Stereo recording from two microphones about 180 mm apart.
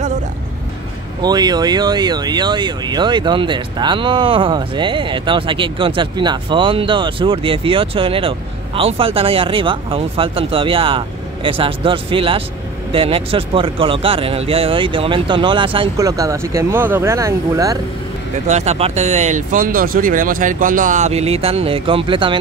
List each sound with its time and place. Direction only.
1.2 s speech: 25° right (ahead or behind)
18.5 s speech: 35° right (ahead or behind)